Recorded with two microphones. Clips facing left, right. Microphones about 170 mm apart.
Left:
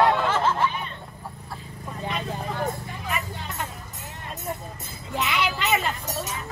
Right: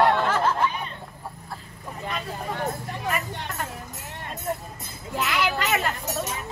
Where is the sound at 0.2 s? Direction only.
Centre (ahead or behind).